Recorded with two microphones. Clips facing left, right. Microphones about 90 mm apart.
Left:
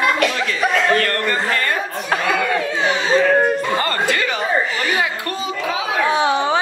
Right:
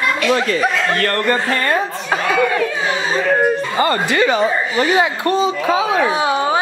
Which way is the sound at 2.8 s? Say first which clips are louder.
Left 6 dB; 10° right (ahead or behind).